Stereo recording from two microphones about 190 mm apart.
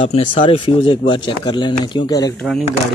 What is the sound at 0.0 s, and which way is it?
Speech, 30° left (ahead or behind).